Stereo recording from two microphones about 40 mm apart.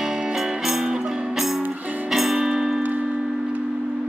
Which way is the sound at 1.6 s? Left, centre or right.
Right.